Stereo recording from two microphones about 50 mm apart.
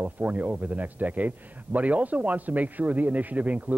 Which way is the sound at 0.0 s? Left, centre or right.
Right.